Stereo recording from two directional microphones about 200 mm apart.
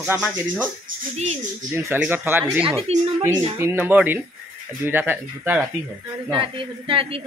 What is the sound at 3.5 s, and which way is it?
Speech, 10° right (ahead or behind).